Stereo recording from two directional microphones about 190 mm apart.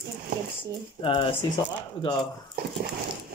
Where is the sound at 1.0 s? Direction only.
30° left (ahead or behind).